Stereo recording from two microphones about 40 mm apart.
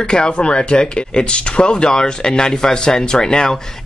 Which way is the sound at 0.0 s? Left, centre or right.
Left.